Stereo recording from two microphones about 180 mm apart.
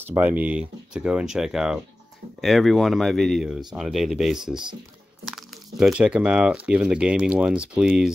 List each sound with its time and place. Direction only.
0.0 s speech: 10° right (ahead or behind)